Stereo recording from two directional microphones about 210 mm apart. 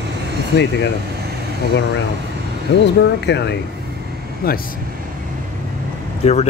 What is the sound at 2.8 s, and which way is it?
Speech, 55° left (ahead or behind).